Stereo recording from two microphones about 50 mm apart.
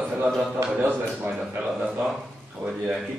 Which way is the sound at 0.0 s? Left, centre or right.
Right.